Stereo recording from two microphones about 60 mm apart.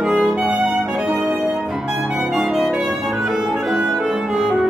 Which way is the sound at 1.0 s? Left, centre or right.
Centre.